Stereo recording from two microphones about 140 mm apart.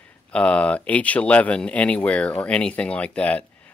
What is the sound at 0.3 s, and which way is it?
Speech, 10° left (ahead or behind).